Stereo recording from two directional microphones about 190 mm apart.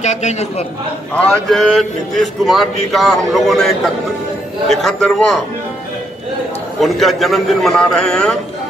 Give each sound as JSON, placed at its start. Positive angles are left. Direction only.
{"t": 0.0, "sound": "a man's voice", "side_deg": 40}
{"t": 1.1, "sound": "speech", "side_deg": 5}
{"t": 6.8, "sound": "speech", "side_deg": 0}